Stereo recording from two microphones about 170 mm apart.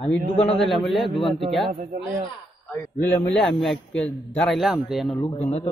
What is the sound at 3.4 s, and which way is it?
A man's voice, centre (ahead or behind).